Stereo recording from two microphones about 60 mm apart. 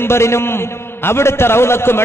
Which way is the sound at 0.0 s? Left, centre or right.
Left.